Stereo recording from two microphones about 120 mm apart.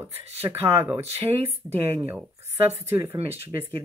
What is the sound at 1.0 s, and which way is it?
Speech, 60° right (ahead or behind).